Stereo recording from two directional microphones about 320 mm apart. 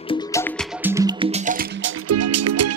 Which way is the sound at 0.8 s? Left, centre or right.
Centre.